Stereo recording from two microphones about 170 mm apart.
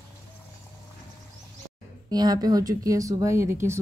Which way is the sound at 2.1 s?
25° right (ahead or behind).